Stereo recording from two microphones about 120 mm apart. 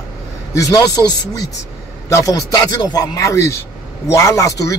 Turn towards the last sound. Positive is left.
turn(degrees=25)  # may be behind; listen again after turning